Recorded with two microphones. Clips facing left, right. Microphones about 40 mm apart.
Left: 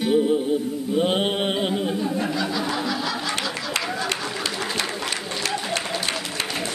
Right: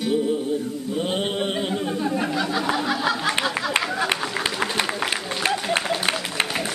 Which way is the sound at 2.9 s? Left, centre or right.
Centre.